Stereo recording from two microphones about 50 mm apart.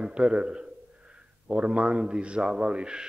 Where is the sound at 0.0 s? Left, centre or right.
Right.